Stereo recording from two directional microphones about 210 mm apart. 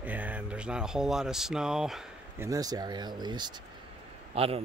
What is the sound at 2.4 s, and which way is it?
Speech, 15° right (ahead or behind).